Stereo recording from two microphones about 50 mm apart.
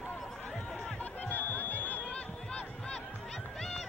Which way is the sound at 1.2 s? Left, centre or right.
Left.